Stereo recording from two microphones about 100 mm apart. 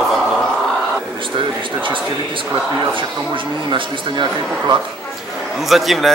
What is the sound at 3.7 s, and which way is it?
Speech, 50° right (ahead or behind).